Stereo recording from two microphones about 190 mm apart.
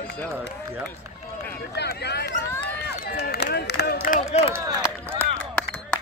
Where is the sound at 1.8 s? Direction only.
60° left (ahead or behind).